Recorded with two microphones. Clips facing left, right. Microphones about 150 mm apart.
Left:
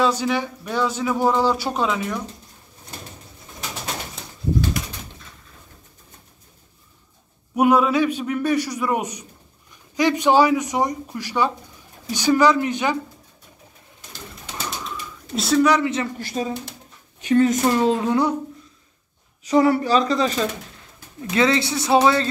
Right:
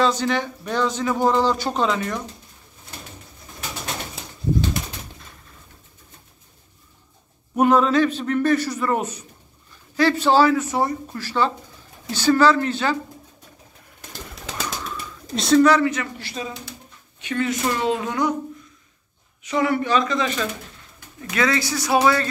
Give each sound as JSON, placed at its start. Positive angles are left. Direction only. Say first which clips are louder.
{"t": 0.0, "sound": "speech", "louder": "even", "side_deg": 10}
{"t": 4.2, "sound": "pigeon", "louder": "right 1 dB", "side_deg": -5}
{"t": 7.5, "sound": "speech", "louder": "even", "side_deg": 10}
{"t": 15.3, "sound": "speech", "louder": "right 3 dB", "side_deg": 5}
{"t": 15.7, "sound": "speech", "louder": "right 1 dB", "side_deg": 25}
{"t": 16.2, "sound": "speech", "louder": "left 6 dB", "side_deg": 45}
{"t": 19.4, "sound": "speech", "louder": "left 4 dB", "side_deg": 35}